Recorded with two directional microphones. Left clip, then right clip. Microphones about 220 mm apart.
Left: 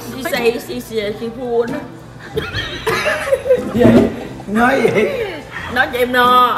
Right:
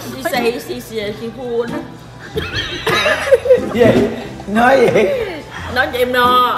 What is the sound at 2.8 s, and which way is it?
Snicker, 45° right (ahead or behind).